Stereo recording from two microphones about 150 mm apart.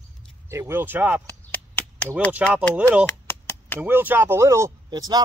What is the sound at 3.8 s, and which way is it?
Speech, 10° right (ahead or behind).